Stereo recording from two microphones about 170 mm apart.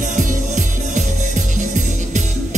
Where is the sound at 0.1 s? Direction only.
50° right (ahead or behind).